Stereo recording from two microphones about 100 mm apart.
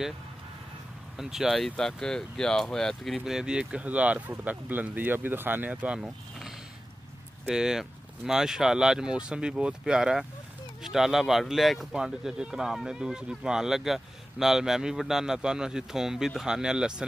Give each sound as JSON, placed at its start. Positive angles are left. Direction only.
{"t": 1.1, "sound": "speech", "side_deg": -5}
{"t": 5.9, "sound": "a sound", "side_deg": -5}
{"t": 7.4, "sound": "speech", "side_deg": -5}